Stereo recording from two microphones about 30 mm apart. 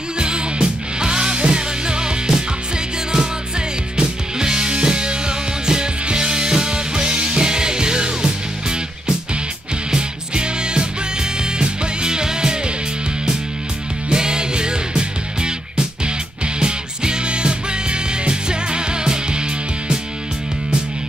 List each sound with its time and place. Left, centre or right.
0.2 s music: right
14.0 s music: right
16.5 s music: right